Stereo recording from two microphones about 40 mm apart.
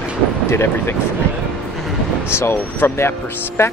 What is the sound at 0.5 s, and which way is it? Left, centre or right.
Speech, left.